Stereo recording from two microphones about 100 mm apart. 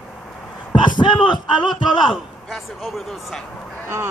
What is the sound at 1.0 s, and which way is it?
Speech, 50° left (ahead or behind).